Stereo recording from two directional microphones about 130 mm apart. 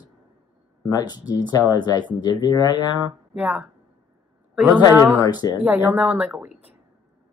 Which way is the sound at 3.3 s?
10° right (ahead or behind).